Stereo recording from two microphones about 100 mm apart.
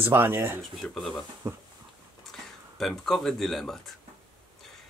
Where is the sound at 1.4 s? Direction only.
30° right (ahead or behind).